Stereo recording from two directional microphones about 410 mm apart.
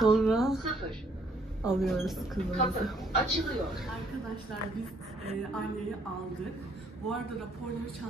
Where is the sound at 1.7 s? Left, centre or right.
Centre.